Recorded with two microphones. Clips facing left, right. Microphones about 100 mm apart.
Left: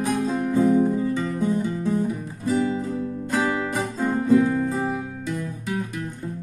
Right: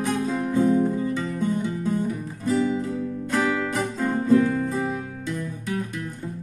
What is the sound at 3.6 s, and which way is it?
Music, 10° left (ahead or behind).